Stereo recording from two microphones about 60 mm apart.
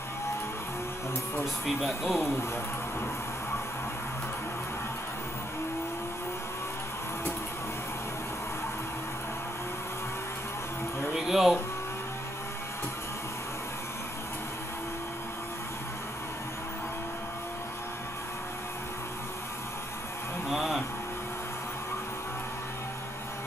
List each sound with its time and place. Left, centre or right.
1.4 s speech: centre
2.1 s speech: left
11.1 s music: centre
20.4 s a sound: centre